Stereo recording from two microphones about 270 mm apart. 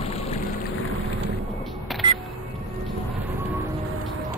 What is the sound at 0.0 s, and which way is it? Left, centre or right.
Boat, left.